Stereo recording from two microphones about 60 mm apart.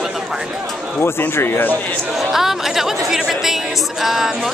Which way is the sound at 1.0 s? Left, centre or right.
Left.